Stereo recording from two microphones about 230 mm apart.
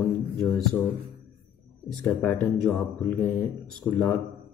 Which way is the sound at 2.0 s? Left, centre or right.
Centre.